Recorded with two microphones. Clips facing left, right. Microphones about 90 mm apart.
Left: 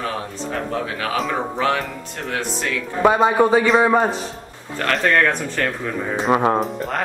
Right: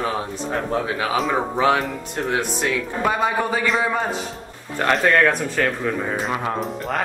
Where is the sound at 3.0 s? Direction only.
25° left (ahead or behind).